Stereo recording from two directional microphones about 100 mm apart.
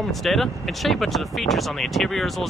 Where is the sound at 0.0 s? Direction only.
Centre (ahead or behind).